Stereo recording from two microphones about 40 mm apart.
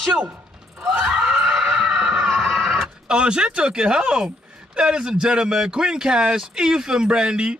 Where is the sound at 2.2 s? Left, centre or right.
Centre.